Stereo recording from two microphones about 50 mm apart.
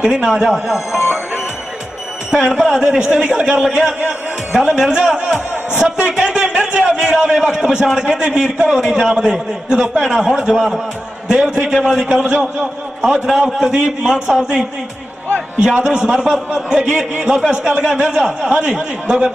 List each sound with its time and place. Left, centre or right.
0.0 s a man's voice: centre
2.3 s a man's voice: centre
13.0 s a man's voice: centre